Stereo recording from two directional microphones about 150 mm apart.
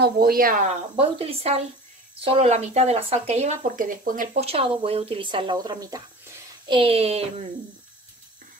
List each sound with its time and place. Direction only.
0.0 s speech: 80° right; by 0.7 s 65° right (ahead or behind)
0.9 s a woman's voice: 40° right (ahead or behind); by 4.4 s 65° right (ahead or behind)
4.4 s speech: 40° right (ahead or behind); by 6.8 s 25° right (ahead or behind)
6.8 s a woman's voice: 40° right (ahead or behind)